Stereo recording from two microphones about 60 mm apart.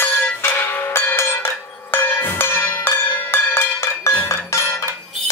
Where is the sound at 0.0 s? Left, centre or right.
Left.